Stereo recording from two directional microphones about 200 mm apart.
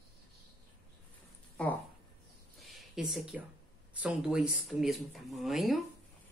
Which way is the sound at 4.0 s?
5° right (ahead or behind).